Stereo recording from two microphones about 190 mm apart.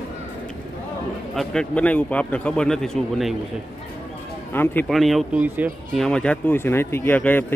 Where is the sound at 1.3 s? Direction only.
5° left (ahead or behind).